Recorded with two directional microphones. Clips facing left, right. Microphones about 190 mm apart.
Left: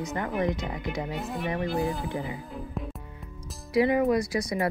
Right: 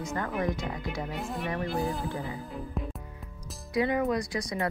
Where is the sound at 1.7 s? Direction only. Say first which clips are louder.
Left 2 dB; centre (ahead or behind).